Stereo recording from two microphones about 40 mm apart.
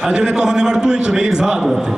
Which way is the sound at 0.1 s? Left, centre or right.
Centre.